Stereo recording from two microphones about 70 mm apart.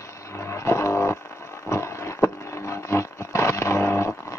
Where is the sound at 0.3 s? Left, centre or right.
Left.